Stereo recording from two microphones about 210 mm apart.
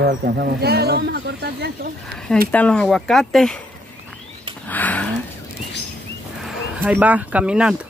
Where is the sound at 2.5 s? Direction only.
5° left (ahead or behind).